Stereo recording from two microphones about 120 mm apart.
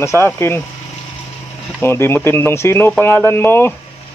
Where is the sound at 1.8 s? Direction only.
20° left (ahead or behind).